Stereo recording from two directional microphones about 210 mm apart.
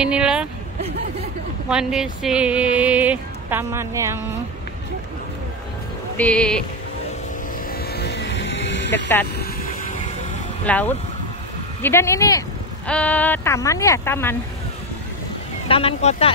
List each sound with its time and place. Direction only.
0.0 s speech: 5° right (ahead or behind)
1.7 s speech: 5° right (ahead or behind)
6.1 s music: 5° left (ahead or behind)
7.7 s vehicle: 50° left (ahead or behind)
9.4 s vehicle: 40° left (ahead or behind)
10.6 s a woman's voice: 10° left (ahead or behind)
15.7 s speech: 30° left (ahead or behind)